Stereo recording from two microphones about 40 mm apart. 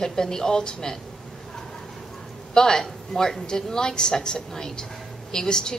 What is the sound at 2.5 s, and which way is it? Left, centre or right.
A woman's voice, centre.